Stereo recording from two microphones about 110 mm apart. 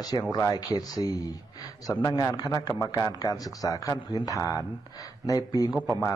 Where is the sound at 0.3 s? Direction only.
35° left (ahead or behind).